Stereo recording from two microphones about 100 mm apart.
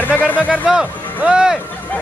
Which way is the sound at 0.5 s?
5° right (ahead or behind).